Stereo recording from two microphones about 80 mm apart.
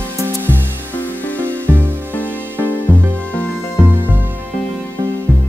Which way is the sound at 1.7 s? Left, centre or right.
Right.